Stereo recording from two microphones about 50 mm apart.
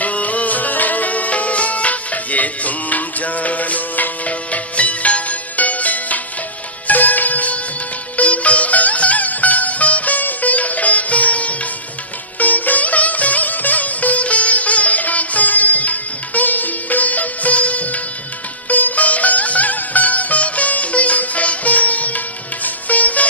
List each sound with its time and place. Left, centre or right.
0.0 s music: left
12.4 s sitar: left
18.7 s music: left